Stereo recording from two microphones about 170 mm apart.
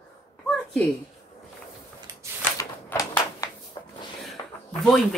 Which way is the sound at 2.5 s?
20° left (ahead or behind).